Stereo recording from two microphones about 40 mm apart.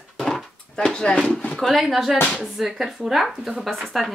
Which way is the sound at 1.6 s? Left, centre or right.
Centre.